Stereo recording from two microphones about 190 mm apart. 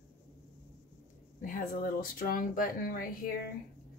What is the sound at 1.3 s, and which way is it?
Speech, 45° left (ahead or behind).